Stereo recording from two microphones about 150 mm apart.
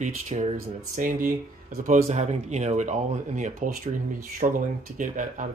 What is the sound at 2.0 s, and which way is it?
Speech, 50° right (ahead or behind).